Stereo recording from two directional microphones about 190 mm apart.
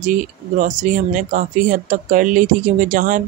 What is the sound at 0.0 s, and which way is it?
Speech, 40° right (ahead or behind).